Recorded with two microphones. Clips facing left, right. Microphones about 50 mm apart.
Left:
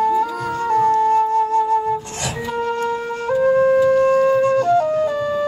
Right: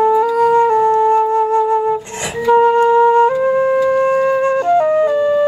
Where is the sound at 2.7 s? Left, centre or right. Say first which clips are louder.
Right 12 dB; right.